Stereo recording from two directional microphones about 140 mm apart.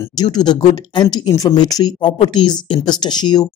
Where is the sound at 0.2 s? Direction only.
30° left (ahead or behind).